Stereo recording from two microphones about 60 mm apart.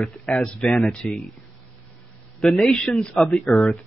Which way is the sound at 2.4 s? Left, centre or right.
Centre.